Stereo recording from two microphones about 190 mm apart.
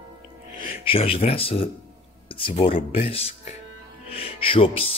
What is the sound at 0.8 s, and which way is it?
Speech, 30° left (ahead or behind).